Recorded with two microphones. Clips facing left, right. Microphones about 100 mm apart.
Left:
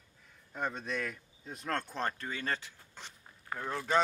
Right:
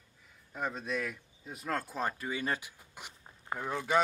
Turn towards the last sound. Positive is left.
turn(degrees=-10)  # may be behind; listen again after turning